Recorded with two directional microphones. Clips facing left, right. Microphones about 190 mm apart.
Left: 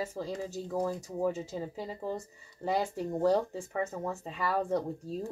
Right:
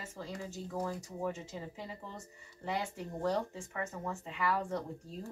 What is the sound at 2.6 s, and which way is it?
Speech, 40° left (ahead or behind).